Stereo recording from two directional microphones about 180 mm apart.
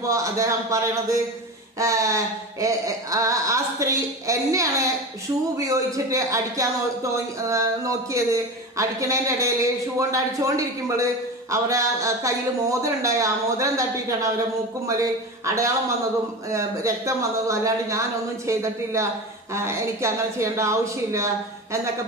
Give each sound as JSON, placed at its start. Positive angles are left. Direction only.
{"t": 0.0, "sound": "speech", "side_deg": -15}
{"t": 15.4, "sound": "speech", "side_deg": -15}